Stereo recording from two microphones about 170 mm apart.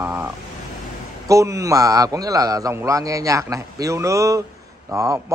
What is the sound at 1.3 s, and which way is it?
A man's voice, 20° right (ahead or behind).